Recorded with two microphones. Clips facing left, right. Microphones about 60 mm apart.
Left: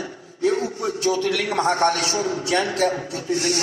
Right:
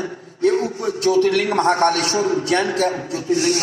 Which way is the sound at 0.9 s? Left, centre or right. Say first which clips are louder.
Right 6 dB; right.